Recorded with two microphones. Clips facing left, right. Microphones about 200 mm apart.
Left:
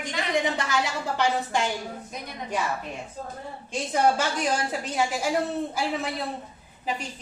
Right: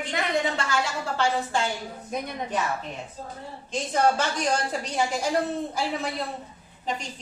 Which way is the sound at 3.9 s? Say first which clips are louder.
Even; 10° left (ahead or behind).